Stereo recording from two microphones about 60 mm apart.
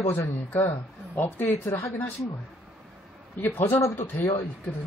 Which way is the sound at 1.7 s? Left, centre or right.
Left.